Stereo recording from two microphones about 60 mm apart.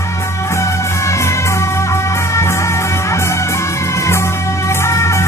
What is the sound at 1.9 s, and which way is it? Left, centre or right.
Music, left.